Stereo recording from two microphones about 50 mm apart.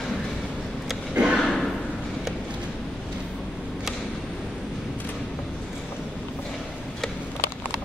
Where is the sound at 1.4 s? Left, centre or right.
Centre.